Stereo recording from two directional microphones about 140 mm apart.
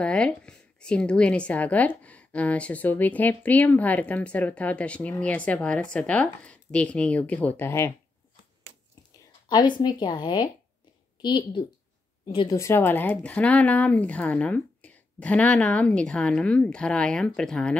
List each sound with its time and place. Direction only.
0.0 s speech: 5° left (ahead or behind)
9.5 s speech: 30° left (ahead or behind)
12.5 s speech: 15° left (ahead or behind)